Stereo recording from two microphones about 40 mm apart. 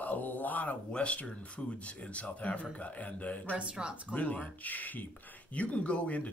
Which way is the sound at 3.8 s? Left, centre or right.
Centre.